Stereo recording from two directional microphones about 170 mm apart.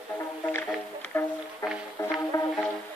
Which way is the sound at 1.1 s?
10° left (ahead or behind).